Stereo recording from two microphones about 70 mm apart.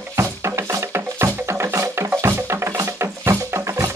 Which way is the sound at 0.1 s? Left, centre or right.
Right.